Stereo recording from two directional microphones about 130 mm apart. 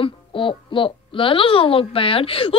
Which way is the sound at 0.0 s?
40° left (ahead or behind).